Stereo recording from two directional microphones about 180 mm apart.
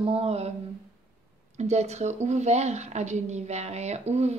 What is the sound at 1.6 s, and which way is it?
A woman's voice, 35° right (ahead or behind).